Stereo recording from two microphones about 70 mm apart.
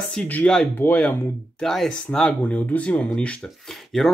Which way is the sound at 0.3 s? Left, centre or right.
Centre.